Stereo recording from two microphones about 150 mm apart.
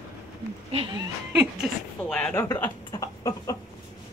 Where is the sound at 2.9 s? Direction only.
20° left (ahead or behind).